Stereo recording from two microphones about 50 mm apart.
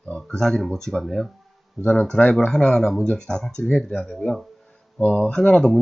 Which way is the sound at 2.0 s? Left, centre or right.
Centre.